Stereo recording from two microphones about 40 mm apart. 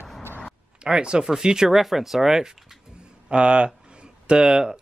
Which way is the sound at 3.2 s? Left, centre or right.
Right.